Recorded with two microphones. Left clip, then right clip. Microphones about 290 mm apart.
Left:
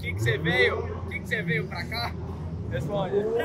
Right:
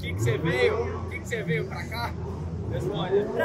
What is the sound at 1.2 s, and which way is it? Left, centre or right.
Speech, centre.